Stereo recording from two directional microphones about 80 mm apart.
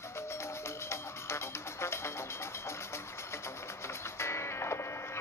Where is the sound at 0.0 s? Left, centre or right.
Left.